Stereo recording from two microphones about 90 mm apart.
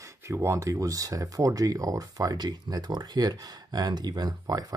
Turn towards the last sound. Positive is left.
turn(degrees=-45)  # may be behind; listen again after turning